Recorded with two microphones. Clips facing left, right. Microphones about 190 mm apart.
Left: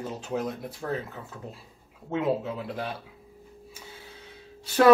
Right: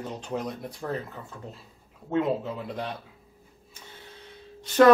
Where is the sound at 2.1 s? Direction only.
5° left (ahead or behind).